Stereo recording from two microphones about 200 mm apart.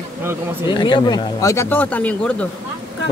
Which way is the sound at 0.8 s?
20° left (ahead or behind).